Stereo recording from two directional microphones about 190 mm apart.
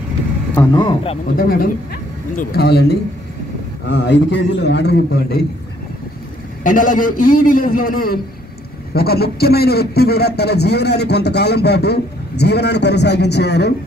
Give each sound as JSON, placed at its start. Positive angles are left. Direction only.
{"t": 0.6, "sound": "speech", "side_deg": 25}
{"t": 1.3, "sound": "speech", "side_deg": 50}
{"t": 6.6, "sound": "speech", "side_deg": 45}